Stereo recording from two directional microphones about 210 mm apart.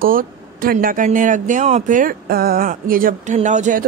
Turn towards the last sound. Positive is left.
turn(degrees=-35)  # may be behind; listen again after turning